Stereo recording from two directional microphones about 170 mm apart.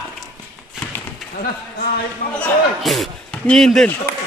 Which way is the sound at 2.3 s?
5° left (ahead or behind).